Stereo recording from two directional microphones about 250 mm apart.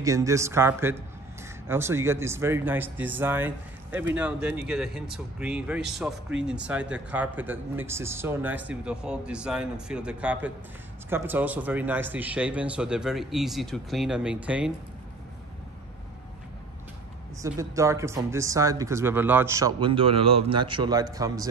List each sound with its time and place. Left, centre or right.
0.0 s speech: centre
17.4 s speech: centre